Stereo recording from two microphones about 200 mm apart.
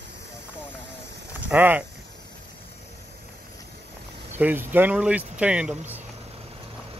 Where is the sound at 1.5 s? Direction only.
10° right (ahead or behind).